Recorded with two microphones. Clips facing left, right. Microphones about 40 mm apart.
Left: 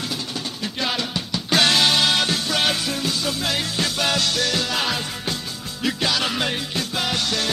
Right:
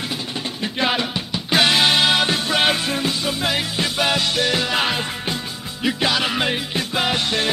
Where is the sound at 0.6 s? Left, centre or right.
Right.